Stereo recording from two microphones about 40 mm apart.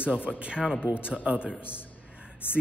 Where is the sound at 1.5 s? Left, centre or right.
Left.